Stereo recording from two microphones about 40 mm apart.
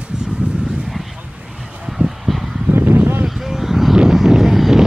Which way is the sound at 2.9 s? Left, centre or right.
Right.